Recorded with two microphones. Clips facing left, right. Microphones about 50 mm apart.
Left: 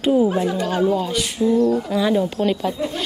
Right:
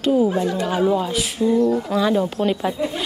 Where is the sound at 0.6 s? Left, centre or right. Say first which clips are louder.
Even; centre.